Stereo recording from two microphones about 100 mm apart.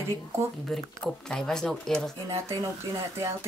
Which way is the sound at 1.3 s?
5° left (ahead or behind).